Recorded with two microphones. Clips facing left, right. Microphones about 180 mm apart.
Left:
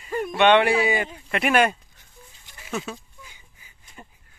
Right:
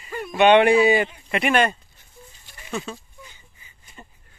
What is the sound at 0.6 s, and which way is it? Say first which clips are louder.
Speech: right 5 dB; 25° right (ahead or behind).